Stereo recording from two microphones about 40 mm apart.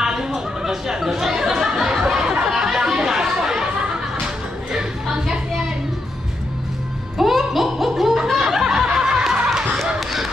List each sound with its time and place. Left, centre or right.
0.0 s a sound: centre
3.3 s chatter: centre
5.1 s a sound: centre
7.2 s music: centre
8.4 s snicker: centre
9.9 s basketball bounce: centre